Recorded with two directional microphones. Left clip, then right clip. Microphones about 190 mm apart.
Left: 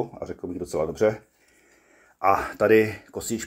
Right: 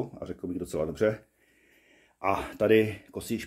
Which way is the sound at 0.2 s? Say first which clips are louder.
Left 3 dB; centre (ahead or behind).